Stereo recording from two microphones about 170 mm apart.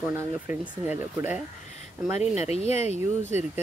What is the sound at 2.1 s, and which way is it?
Speech, 40° left (ahead or behind).